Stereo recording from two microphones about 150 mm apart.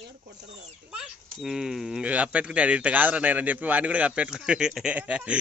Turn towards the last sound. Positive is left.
turn(degrees=-10)  # may be behind; listen again after turning